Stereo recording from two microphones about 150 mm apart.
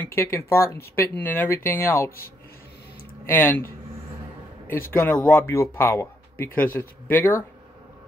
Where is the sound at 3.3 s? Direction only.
15° left (ahead or behind).